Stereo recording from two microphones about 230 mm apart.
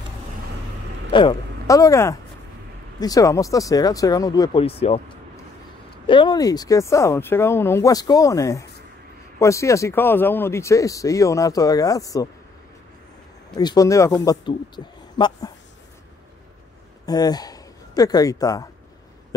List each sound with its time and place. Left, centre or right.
1.1 s speech: centre
6.0 s speech: centre
13.6 s speech: centre
17.0 s speech: centre